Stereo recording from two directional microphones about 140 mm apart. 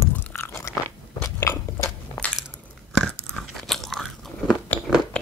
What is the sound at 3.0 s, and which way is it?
Biting, 5° left (ahead or behind).